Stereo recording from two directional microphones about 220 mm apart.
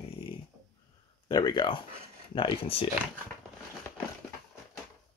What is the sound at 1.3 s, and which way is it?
Speech, 20° left (ahead or behind).